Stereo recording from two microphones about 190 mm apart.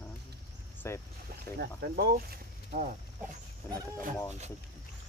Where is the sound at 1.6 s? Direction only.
55° right (ahead or behind).